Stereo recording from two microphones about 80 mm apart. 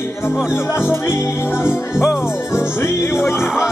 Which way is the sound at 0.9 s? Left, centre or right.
Left.